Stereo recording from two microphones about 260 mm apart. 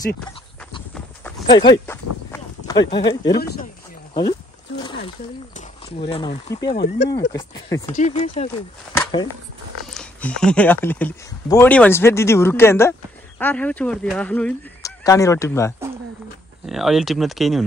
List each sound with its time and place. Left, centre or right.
1.2 s clip-clop: centre
4.1 s a sound: left
5.6 s speech: left
6.7 s speech: left
7.3 s speech: centre
7.9 s speech: left
8.9 s speech: centre
9.9 s speech: centre
16.6 s speech: centre